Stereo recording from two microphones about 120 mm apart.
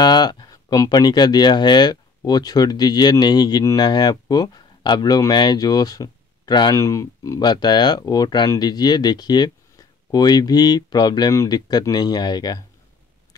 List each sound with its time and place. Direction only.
0.0 s speech: 35° left (ahead or behind)